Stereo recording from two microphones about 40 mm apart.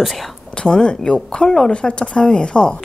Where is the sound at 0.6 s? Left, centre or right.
Left.